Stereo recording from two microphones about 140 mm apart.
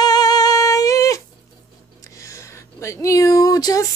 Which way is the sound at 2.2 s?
20° left (ahead or behind).